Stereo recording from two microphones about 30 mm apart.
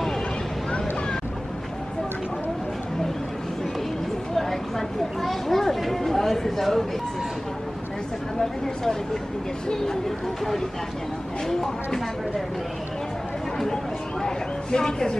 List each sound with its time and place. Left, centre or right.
4.4 s a sound: centre
8.4 s speech: centre
14.2 s speech: left